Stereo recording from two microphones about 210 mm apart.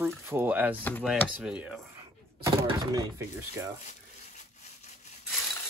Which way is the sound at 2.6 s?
15° right (ahead or behind).